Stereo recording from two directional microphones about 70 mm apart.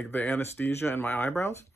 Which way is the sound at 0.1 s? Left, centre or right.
Left.